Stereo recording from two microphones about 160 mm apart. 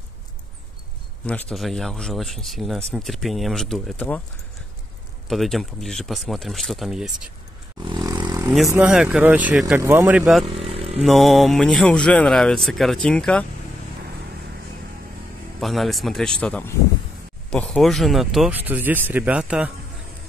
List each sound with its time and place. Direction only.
1.2 s speech: 5° left (ahead or behind)
5.3 s speech: centre (ahead or behind)
7.8 s vehicle: 25° right (ahead or behind)
8.7 s speech: 5° right (ahead or behind)
10.4 s chainsaw: 35° right (ahead or behind)
11.1 s speech: centre (ahead or behind)
15.6 s speech: centre (ahead or behind)